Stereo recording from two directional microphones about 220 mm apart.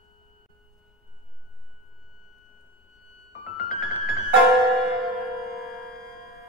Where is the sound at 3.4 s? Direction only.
40° left (ahead or behind).